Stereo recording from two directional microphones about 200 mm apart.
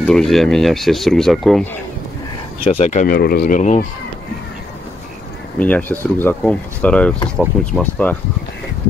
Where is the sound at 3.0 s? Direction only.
50° left (ahead or behind).